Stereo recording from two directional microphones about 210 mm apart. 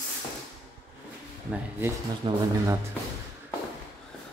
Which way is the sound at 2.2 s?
25° right (ahead or behind).